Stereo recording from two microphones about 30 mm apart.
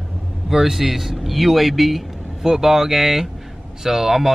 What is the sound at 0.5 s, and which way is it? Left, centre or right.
Speech, centre.